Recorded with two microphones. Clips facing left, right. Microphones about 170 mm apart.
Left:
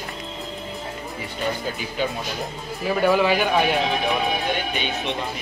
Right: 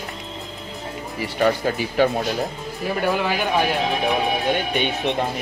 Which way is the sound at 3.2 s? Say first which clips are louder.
Left 3 dB; centre (ahead or behind).